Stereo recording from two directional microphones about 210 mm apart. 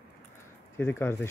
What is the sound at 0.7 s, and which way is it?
Speech, 10° left (ahead or behind).